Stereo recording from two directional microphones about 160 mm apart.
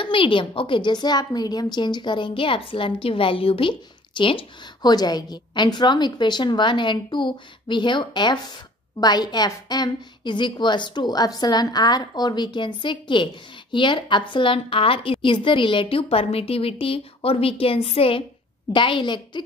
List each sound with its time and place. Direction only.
0.0 s a woman's voice: 35° left (ahead or behind)